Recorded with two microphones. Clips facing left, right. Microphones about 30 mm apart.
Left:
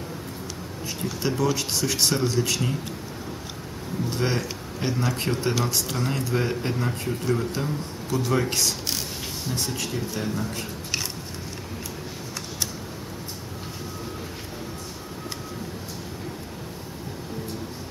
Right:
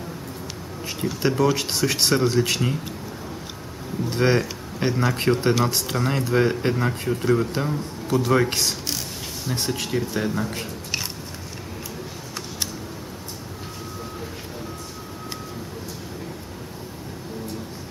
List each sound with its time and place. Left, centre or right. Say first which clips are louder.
1.2 s speech: right 4 dB; centre
4.1 s speech: right 7 dB; centre